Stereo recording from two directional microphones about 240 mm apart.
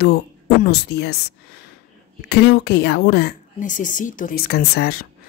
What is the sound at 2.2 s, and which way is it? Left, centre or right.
Speech, left.